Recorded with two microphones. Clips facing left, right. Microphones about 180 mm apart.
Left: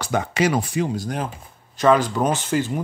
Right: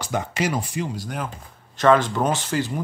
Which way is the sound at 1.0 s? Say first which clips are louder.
Left 3 dB; 35° left (ahead or behind).